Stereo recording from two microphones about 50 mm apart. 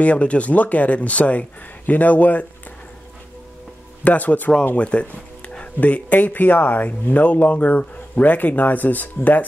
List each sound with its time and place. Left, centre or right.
0.0 s speech: left
4.0 s speech: left